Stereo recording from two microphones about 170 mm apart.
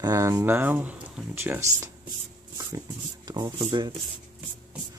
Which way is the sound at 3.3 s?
25° right (ahead or behind).